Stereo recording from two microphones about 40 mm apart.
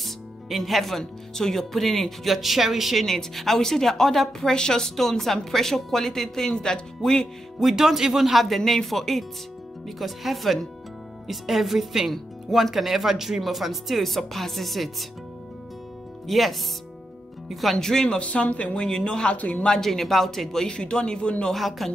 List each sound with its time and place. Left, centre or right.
0.0 s speech: centre
3.1 s speech: centre
7.6 s speech: centre
12.1 s speech: centre
12.7 s speech: centre
16.3 s speech: centre
17.7 s speech: centre
18.2 s speech: left
18.8 s speech: centre
19.3 s speech: left
19.6 s speech: centre; by 21.5 s left
21.5 s speech: centre